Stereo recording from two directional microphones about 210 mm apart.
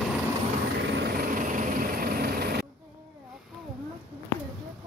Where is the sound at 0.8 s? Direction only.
55° right (ahead or behind).